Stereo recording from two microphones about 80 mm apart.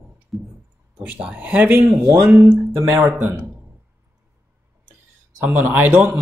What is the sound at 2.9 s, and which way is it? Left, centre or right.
Speech, right.